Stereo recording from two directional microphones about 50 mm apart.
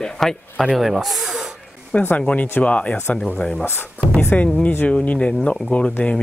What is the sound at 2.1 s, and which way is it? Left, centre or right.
Speech, left.